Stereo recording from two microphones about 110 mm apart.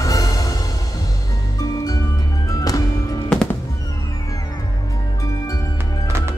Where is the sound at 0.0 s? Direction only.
30° left (ahead or behind).